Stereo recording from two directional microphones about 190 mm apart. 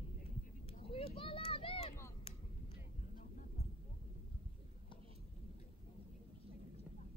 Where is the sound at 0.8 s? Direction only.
30° left (ahead or behind).